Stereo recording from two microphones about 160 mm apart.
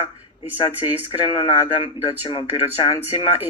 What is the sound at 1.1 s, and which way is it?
A man's voice, 30° left (ahead or behind).